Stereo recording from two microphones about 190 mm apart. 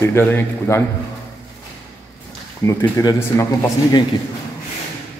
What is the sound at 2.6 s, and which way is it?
Speech, 15° left (ahead or behind).